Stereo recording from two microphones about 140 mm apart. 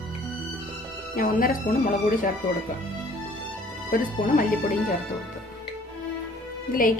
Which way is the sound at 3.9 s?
75° left (ahead or behind).